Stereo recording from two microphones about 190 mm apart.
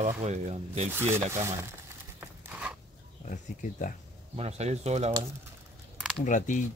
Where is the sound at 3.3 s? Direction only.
45° left (ahead or behind).